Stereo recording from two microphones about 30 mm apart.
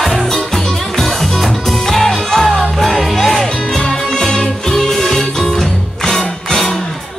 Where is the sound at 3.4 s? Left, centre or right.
Left.